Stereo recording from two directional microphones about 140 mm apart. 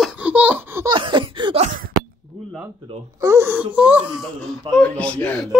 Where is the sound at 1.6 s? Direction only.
75° right (ahead or behind).